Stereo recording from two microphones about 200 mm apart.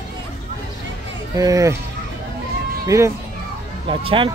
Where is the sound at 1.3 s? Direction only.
15° right (ahead or behind).